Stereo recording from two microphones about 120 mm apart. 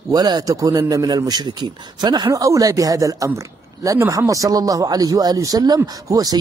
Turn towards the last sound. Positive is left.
turn(degrees=-30)  # may be behind; listen again after turning